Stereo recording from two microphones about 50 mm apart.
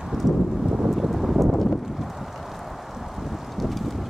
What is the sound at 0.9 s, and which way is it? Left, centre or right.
Clip-clop, centre.